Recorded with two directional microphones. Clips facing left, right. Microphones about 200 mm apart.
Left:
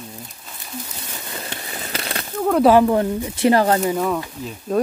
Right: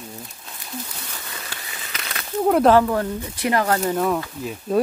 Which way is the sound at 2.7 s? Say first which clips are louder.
Left 3 dB; 20° left (ahead or behind).